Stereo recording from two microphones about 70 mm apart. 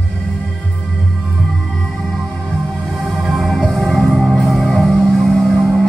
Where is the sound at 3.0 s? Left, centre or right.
Centre.